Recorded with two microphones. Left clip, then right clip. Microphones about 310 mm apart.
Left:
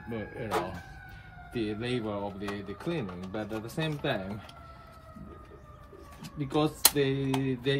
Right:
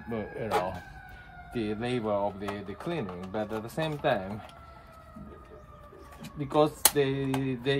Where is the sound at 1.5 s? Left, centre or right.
Centre.